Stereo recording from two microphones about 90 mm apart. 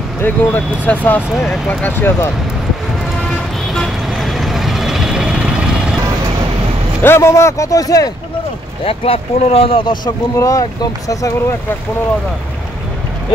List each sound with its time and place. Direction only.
0.2 s speech: 20° left (ahead or behind)
3.7 s vehicle: centre (ahead or behind)
7.0 s speech: 30° left (ahead or behind)
8.8 s speech: 90° left
10.0 s speech: 40° left (ahead or behind)